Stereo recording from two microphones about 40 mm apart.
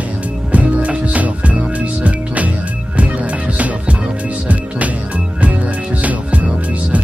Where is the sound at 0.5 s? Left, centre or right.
Right.